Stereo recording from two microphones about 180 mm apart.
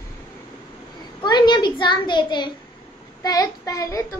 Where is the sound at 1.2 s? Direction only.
25° left (ahead or behind).